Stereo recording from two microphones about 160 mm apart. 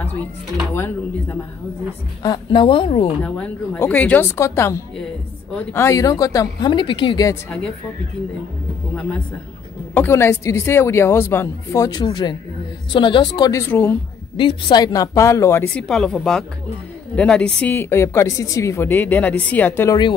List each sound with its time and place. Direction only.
2.2 s speech: 25° left (ahead or behind)
3.3 s a woman's voice: 10° left (ahead or behind); by 7.3 s 25° left (ahead or behind)
9.9 s a woman's voice: 15° left (ahead or behind)
14.3 s speech: 30° left (ahead or behind)
15.7 s a woman's voice: 5° left (ahead or behind)